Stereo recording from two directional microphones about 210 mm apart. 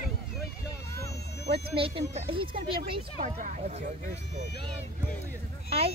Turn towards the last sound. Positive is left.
turn(degrees=-30)  # may be behind; listen again after turning